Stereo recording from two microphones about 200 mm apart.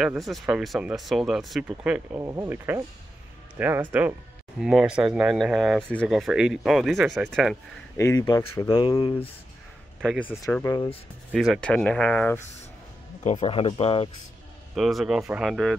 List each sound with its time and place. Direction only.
0.0 s speech: centre (ahead or behind)
2.1 s speech: 15° right (ahead or behind); by 7.5 s centre (ahead or behind)
8.0 s speech: 15° left (ahead or behind)
10.4 s speech: 15° left (ahead or behind)
11.3 s speech: centre (ahead or behind)
13.2 s speech: 35° left (ahead or behind)
14.8 s speech: centre (ahead or behind)